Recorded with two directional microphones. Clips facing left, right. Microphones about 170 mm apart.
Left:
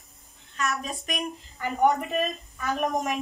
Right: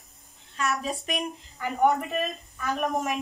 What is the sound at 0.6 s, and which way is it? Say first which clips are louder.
Speech: right 1 dB; 30° right (ahead or behind).